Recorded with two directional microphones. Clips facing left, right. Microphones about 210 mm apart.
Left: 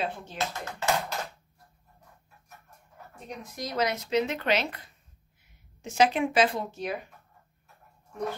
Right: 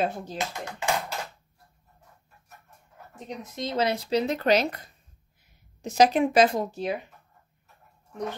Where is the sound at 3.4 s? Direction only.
25° right (ahead or behind).